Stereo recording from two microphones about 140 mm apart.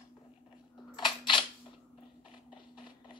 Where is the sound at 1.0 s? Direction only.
35° left (ahead or behind).